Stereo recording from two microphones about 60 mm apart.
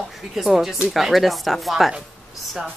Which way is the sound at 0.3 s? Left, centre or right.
Centre.